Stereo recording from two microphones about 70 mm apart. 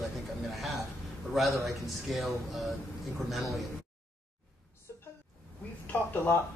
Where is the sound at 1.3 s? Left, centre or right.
Centre.